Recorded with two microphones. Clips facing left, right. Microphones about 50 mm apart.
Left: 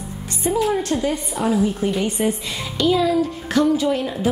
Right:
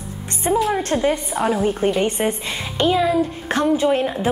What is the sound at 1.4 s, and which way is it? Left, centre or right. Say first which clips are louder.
Speech: left 1 dB; centre.